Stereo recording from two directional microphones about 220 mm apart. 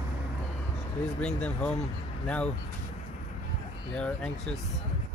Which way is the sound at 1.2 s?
5° left (ahead or behind).